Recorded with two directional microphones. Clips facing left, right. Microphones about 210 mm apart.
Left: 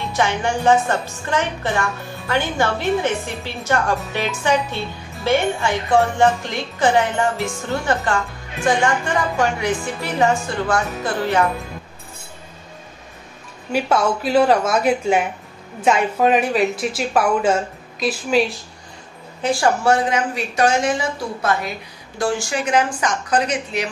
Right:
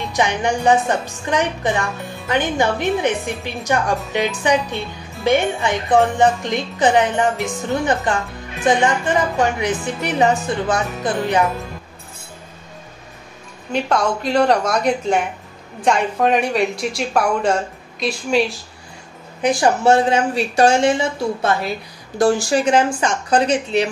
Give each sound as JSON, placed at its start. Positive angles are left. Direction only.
{"t": 0.1, "sound": "a woman's voice", "side_deg": -15}
{"t": 13.7, "sound": "speech", "side_deg": 5}
{"t": 19.4, "sound": "speech", "side_deg": -20}
{"t": 22.2, "sound": "speech", "side_deg": -35}